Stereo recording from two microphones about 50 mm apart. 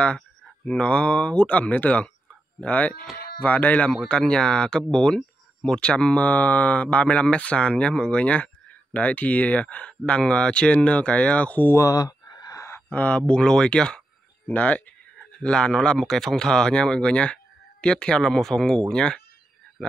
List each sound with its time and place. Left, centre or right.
0.7 s speech: left
4.1 s speech: centre
12.5 s a sound: left
12.9 s speech: left
13.3 s speech: centre
16.0 s speech: centre